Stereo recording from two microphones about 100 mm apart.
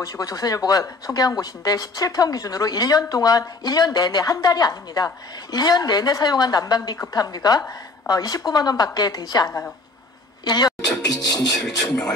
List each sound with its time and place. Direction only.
0.0 s speech: 35° left (ahead or behind)
11.5 s speech: 5° left (ahead or behind)